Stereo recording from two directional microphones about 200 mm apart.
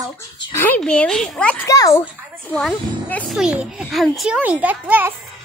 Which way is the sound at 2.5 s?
Centre (ahead or behind).